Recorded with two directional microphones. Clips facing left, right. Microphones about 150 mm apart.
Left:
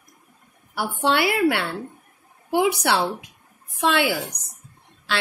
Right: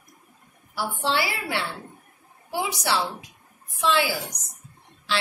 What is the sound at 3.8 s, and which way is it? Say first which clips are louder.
Speech: left 2 dB; 60° left (ahead or behind).